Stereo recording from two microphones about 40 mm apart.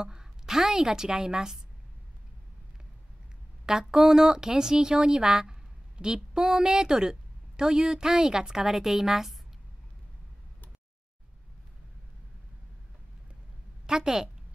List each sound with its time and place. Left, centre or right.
0.0 s a woman's voice: centre
3.9 s a woman's voice: centre
13.8 s a woman's voice: centre